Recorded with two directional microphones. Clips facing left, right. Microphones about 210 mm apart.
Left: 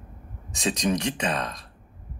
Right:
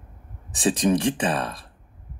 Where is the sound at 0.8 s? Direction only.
30° right (ahead or behind).